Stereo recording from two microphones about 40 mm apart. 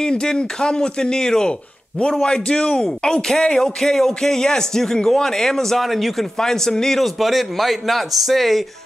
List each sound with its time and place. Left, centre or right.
0.0 s speech: centre
6.3 s speech: centre
7.2 s a man's voice: centre